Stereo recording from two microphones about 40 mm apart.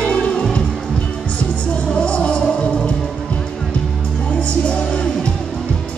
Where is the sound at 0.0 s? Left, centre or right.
Left.